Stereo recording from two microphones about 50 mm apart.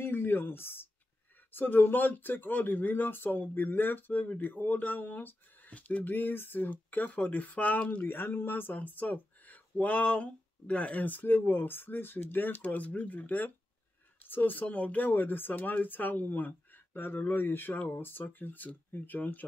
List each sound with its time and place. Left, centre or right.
0.0 s a sound: left
1.5 s speech: left
6.7 s speech: left
8.0 s speech: left